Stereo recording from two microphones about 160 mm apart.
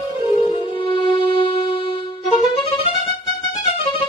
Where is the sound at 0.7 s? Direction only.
30° left (ahead or behind).